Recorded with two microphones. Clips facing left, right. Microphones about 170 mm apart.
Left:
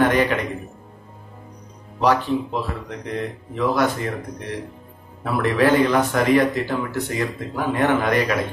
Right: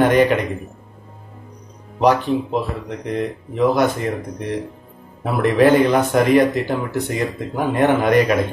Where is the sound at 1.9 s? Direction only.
20° right (ahead or behind).